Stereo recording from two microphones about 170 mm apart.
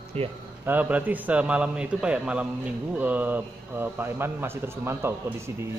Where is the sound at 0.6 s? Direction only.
10° right (ahead or behind).